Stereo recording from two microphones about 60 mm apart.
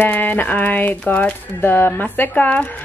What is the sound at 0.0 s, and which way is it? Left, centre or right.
Speech, left.